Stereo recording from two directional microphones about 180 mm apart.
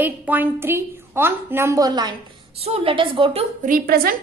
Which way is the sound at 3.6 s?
55° right (ahead or behind).